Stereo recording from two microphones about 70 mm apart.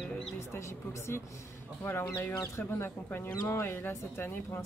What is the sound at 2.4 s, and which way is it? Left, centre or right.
Speech, left.